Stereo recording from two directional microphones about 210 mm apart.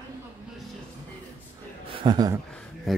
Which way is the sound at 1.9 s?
20° right (ahead or behind).